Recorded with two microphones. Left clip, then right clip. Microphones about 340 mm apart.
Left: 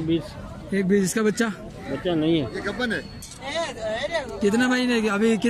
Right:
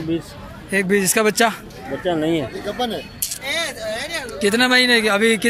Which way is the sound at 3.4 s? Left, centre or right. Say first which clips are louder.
Right 3 dB; left.